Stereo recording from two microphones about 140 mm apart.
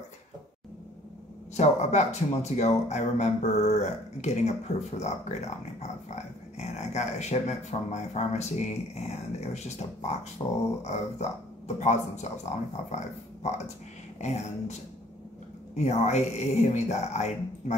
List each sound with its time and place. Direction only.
1.6 s speech: 55° left (ahead or behind)
14.2 s speech: 55° left (ahead or behind)